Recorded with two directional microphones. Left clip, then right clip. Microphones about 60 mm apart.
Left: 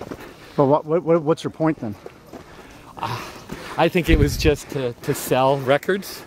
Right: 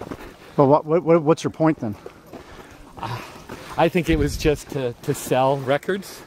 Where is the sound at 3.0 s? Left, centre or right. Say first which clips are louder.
Left 4 dB; left.